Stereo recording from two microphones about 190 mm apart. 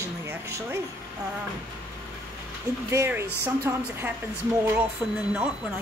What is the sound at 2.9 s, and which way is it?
Speech, 15° right (ahead or behind).